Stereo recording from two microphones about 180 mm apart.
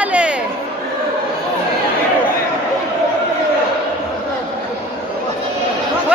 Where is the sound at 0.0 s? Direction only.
5° right (ahead or behind).